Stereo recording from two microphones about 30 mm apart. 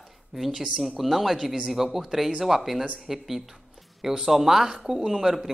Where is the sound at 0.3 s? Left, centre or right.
Centre.